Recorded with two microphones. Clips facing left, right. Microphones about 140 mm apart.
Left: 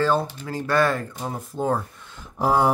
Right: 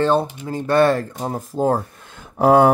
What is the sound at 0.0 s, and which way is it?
Speech, 25° right (ahead or behind).